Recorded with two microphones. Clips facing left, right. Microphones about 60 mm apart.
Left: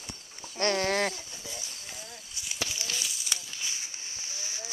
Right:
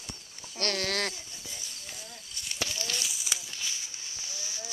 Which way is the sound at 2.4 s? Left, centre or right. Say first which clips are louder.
Right 1 dB; centre.